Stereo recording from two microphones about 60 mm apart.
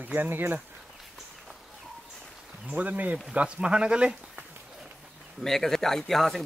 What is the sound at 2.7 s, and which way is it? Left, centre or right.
Speech, right.